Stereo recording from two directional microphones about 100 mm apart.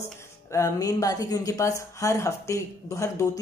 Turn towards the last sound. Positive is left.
turn(degrees=30)  # may be behind; listen again after turning